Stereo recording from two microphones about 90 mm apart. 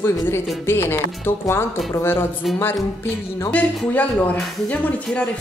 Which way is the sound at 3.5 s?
20° left (ahead or behind).